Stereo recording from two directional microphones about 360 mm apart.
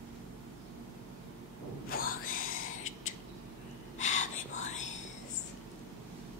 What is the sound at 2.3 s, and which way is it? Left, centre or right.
Whispering, centre.